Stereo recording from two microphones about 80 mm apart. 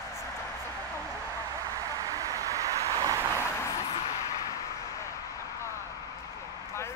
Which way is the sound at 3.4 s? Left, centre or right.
Left.